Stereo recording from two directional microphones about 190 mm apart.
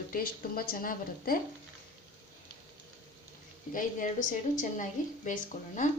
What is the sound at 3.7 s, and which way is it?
A woman's voice, 45° left (ahead or behind).